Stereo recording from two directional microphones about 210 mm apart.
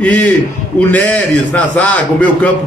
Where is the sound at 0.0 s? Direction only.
5° left (ahead or behind).